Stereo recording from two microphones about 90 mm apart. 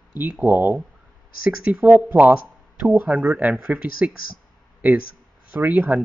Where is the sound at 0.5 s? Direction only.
20° right (ahead or behind).